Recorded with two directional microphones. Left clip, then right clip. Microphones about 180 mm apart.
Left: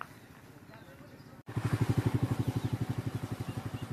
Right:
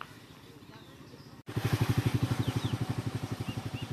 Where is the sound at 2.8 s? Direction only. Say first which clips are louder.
Right 2 dB; 20° left (ahead or behind).